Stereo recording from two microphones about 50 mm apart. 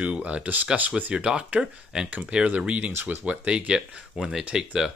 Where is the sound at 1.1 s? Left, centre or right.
Centre.